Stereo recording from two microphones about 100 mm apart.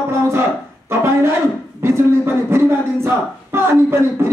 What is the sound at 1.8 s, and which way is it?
A man's voice, 25° right (ahead or behind).